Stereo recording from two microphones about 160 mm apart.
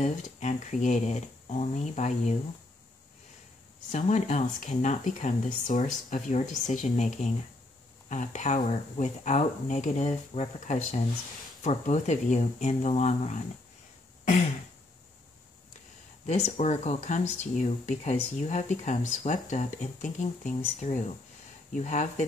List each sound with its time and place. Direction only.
0.0 s speech: 45° left (ahead or behind)
3.9 s speech: 50° left (ahead or behind)
16.3 s speech: 45° left (ahead or behind)